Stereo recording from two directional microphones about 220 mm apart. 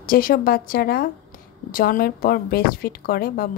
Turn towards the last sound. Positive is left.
turn(degrees=40)  # may be behind; listen again after turning